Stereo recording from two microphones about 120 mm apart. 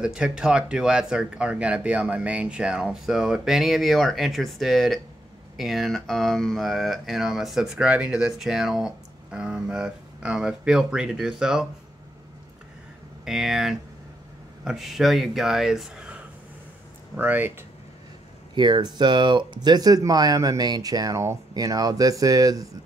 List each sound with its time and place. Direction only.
0.0 s speech: 5° right (ahead or behind)
13.2 s speech: 5° right (ahead or behind)
18.5 s speech: 40° right (ahead or behind)